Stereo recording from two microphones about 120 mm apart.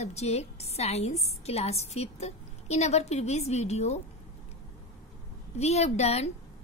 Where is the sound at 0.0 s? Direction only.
65° left (ahead or behind).